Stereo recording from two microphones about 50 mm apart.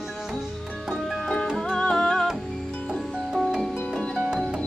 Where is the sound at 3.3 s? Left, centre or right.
Centre.